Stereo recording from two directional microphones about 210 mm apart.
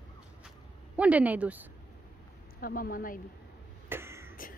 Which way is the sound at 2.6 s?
45° left (ahead or behind).